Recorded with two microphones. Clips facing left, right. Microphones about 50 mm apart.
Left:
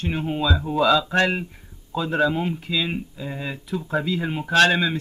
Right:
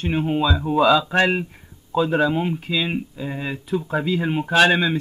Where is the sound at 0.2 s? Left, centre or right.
Centre.